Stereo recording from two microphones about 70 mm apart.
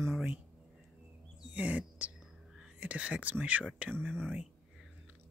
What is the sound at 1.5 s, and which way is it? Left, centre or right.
Speech, centre.